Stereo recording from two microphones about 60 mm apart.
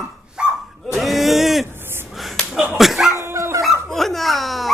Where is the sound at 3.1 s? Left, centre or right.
Right.